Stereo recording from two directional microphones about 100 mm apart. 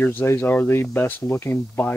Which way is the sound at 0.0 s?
20° left (ahead or behind).